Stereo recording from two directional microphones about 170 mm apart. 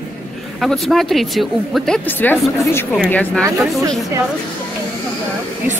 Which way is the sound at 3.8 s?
20° right (ahead or behind).